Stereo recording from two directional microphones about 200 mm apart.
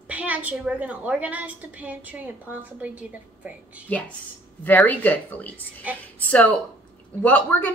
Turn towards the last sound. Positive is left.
turn(degrees=10)  # may be behind; listen again after turning